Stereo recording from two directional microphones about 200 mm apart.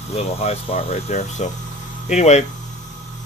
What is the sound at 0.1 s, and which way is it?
Speech, 30° left (ahead or behind).